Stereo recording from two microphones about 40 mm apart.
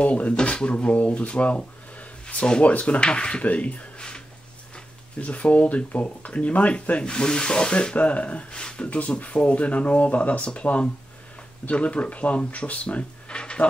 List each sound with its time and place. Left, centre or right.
0.0 s speech: left
2.2 s speech: left
2.6 s speech: left
3.0 s speech: left
3.4 s speech: left
5.2 s speech: left
8.8 s speech: left